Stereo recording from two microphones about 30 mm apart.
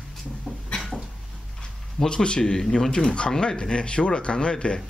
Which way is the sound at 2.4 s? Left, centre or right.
Left.